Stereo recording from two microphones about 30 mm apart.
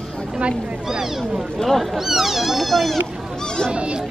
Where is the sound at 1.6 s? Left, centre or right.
Centre.